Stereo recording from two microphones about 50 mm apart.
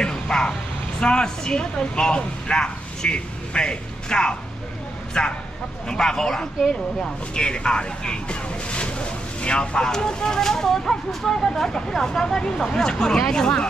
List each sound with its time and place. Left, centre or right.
0.0 s vehicle: centre
1.0 s speech: centre